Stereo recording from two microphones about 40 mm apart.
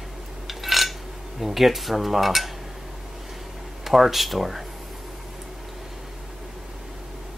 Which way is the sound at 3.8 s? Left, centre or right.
Centre.